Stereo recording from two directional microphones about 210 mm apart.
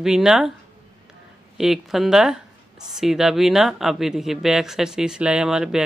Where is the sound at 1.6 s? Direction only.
Centre (ahead or behind).